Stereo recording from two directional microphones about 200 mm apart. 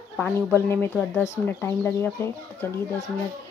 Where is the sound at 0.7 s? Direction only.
10° left (ahead or behind).